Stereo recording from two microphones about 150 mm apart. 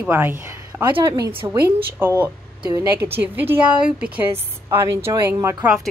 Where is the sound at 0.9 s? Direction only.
25° right (ahead or behind).